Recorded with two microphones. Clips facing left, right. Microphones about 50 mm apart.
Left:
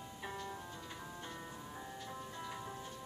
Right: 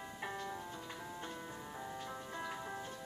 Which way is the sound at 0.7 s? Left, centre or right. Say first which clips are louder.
Right 2 dB; centre.